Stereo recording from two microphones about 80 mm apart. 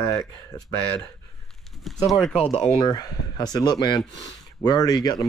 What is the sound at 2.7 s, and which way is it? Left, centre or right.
Speech, left.